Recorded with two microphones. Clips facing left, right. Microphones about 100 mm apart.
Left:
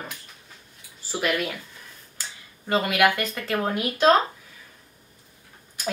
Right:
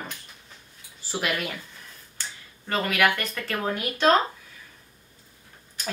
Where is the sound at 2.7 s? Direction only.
15° left (ahead or behind).